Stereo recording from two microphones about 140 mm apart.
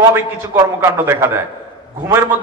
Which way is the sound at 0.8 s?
15° right (ahead or behind).